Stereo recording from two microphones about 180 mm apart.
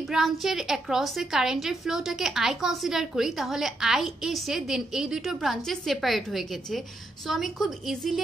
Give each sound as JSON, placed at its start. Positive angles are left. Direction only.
{"t": 0.1, "sound": "a woman's voice", "side_deg": 0}